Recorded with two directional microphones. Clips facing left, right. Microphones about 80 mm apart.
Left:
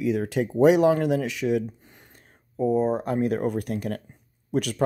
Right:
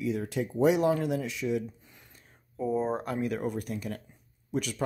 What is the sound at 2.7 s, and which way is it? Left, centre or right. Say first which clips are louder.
Speech: left 6 dB; centre.